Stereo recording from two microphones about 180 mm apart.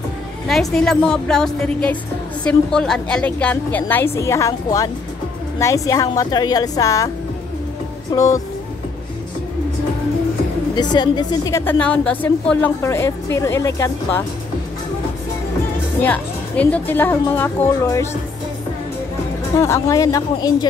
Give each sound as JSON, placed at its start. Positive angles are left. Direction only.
{"t": 0.5, "sound": "a woman's voice", "side_deg": 0}
{"t": 8.1, "sound": "a woman's voice", "side_deg": 20}
{"t": 10.7, "sound": "a woman's voice", "side_deg": 25}
{"t": 16.0, "sound": "a woman's voice", "side_deg": 10}
{"t": 19.6, "sound": "a woman's voice", "side_deg": 20}